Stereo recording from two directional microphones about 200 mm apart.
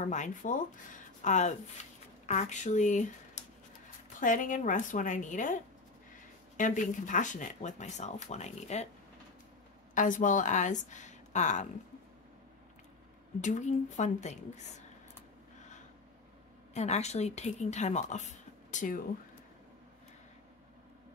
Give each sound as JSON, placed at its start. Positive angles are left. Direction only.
{"t": 0.0, "sound": "speech", "side_deg": 35}
{"t": 9.9, "sound": "a woman's voice", "side_deg": 40}
{"t": 13.4, "sound": "speech", "side_deg": 40}
{"t": 16.7, "sound": "speech", "side_deg": 35}